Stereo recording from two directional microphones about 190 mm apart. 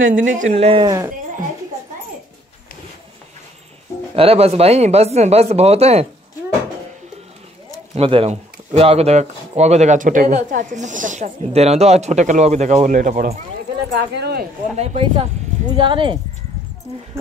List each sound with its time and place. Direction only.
0.0 s speech: 45° right (ahead or behind)
0.8 s speech: 15° right (ahead or behind)
4.1 s speech: 30° right (ahead or behind)
7.9 s speech: 30° right (ahead or behind)
14.1 s speech: 60° right (ahead or behind)
14.8 s speech: 30° right (ahead or behind)